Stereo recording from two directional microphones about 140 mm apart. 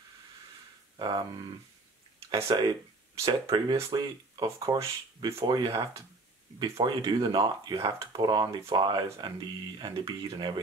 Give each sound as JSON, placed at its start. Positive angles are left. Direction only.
{"t": 0.9, "sound": "speech", "side_deg": -30}
{"t": 2.4, "sound": "speech", "side_deg": -30}
{"t": 6.8, "sound": "speech", "side_deg": -35}